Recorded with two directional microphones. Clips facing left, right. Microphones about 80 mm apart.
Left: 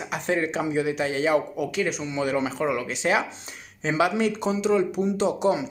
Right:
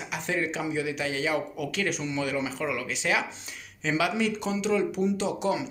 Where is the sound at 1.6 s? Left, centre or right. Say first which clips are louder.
Left 3 dB; centre.